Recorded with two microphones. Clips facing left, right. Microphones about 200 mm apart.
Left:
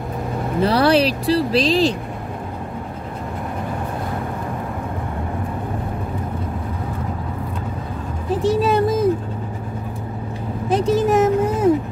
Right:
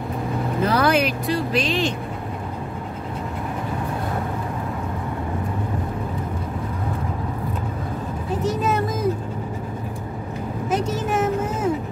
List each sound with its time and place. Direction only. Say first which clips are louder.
0.6 s speech: left 4 dB; 35° left (ahead or behind)
8.4 s music: left 6 dB; 30° left (ahead or behind)
10.7 s vehicle: left 7 dB; 35° left (ahead or behind)